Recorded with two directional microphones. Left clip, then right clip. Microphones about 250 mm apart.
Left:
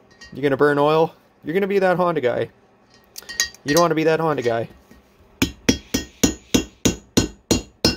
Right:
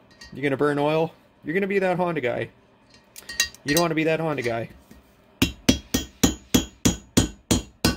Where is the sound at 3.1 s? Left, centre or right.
Centre.